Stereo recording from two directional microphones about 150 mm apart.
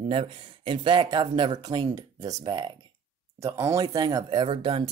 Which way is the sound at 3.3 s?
20° right (ahead or behind).